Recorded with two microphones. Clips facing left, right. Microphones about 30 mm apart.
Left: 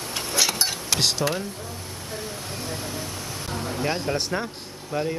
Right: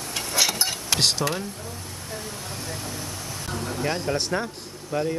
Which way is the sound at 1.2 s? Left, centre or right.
Centre.